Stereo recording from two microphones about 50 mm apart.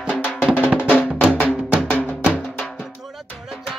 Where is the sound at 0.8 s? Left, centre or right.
Left.